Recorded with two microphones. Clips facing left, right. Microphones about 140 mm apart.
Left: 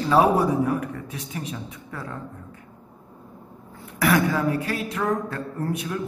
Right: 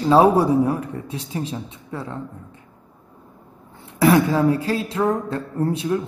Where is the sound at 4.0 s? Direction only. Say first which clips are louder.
Right 5 dB; 30° right (ahead or behind).